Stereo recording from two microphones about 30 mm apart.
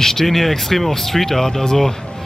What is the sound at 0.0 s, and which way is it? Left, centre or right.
Speech, centre.